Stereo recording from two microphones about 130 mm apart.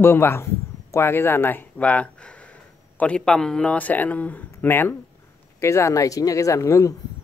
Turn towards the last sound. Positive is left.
turn(degrees=25)  # may be behind; listen again after turning